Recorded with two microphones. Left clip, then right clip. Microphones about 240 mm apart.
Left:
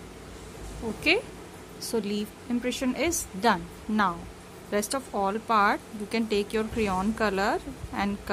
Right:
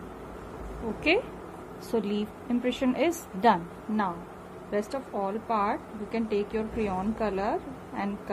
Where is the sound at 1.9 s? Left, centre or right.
Left.